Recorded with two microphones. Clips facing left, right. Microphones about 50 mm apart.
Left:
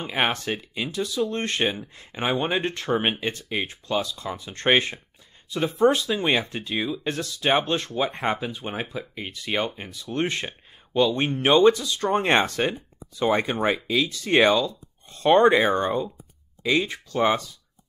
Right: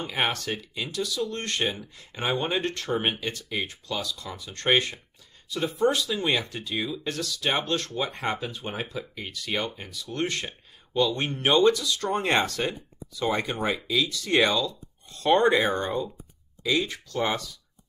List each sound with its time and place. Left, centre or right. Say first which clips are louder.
0.0 s speech: left 3 dB; left
2.3 s speech: left 2 dB; centre
2.6 s speech: left 3 dB; left
11.3 s speech: left 3 dB; centre
11.6 s speech: left 3 dB; left